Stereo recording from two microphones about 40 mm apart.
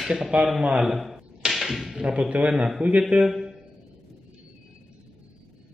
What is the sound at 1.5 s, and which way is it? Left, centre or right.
Arrow, centre.